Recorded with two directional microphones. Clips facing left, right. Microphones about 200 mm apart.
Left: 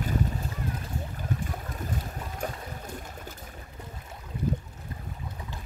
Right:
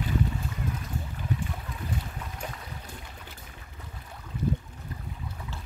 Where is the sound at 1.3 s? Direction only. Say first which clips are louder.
Right 1 dB; 45° left (ahead or behind).